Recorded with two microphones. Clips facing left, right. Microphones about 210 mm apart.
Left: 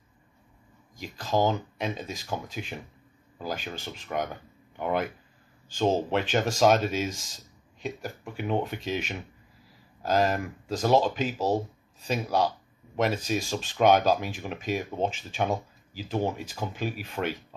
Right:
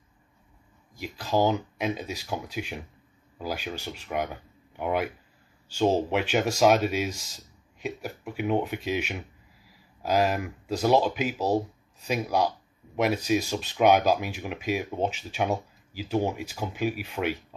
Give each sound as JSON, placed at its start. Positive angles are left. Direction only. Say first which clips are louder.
{"t": 0.9, "sound": "speech", "louder": "right 1 dB", "side_deg": -10}